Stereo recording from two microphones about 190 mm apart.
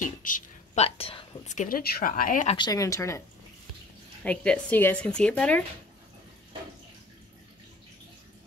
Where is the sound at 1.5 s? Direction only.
50° left (ahead or behind).